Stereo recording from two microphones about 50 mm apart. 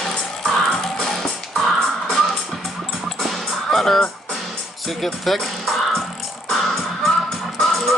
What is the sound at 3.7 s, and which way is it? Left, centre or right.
Music, centre.